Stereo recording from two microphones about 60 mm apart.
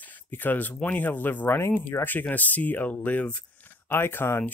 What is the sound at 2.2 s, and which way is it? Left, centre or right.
Speech, left.